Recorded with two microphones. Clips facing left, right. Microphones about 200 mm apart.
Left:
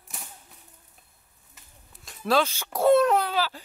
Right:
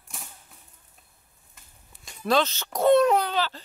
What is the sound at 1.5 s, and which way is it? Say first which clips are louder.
Speech: left 2 dB; centre (ahead or behind).